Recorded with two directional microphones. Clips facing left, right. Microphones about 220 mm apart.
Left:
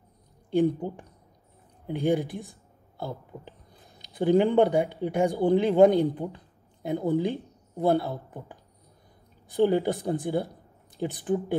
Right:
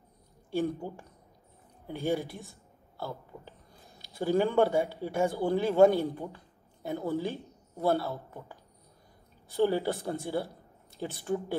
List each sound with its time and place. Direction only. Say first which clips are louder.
0.5 s a man's voice: left 7 dB; 15° left (ahead or behind)